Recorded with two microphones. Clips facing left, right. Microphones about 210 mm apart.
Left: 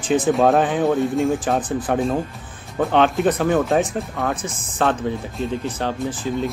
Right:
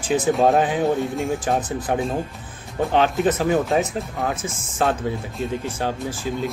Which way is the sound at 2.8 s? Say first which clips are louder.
Left 2 dB; 5° right (ahead or behind).